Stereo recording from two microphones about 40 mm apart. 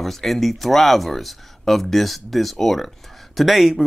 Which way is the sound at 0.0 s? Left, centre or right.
Centre.